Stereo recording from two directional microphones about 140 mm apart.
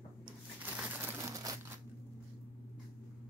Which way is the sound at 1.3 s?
25° right (ahead or behind).